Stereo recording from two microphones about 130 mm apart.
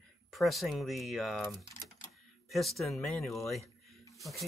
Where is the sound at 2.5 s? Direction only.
Centre (ahead or behind).